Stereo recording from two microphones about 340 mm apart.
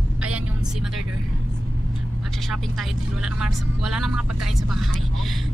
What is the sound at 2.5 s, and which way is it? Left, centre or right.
Speech, centre.